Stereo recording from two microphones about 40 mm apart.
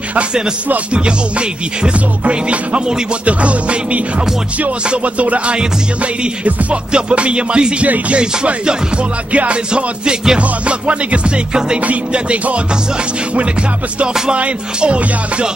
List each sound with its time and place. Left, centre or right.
1.8 s music: right
7.8 s music: right
8.2 s music: right
14.3 s music: right